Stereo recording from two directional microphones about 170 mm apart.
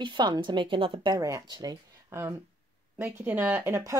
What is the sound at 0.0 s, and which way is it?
Speech, 25° right (ahead or behind).